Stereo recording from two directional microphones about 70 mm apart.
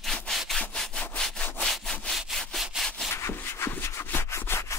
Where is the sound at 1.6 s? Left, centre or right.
Centre.